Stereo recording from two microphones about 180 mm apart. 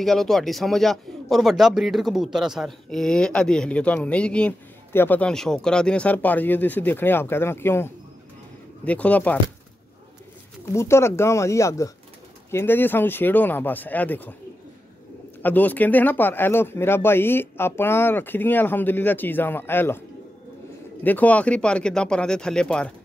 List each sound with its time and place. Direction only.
0.0 s a man's voice: centre (ahead or behind)
10.6 s speech: 15° left (ahead or behind)
15.4 s speech: 10° left (ahead or behind)
21.0 s a man's voice: 10° left (ahead or behind)